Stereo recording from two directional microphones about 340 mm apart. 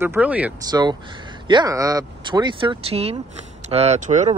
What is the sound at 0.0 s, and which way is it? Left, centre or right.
Speech, centre.